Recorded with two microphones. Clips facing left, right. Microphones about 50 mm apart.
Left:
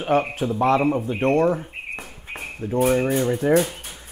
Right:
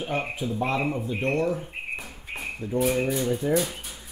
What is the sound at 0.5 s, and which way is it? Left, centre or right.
Speech, left.